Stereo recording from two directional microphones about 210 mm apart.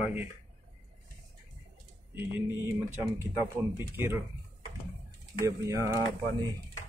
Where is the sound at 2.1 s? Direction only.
10° right (ahead or behind).